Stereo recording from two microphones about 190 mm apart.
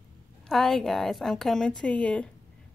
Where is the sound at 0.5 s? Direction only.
Centre (ahead or behind).